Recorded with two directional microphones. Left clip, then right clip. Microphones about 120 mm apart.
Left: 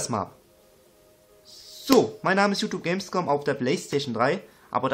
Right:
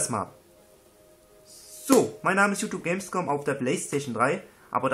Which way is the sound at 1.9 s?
25° left (ahead or behind).